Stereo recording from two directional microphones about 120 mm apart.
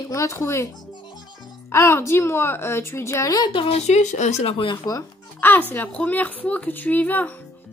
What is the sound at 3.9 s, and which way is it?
Speech, 80° left.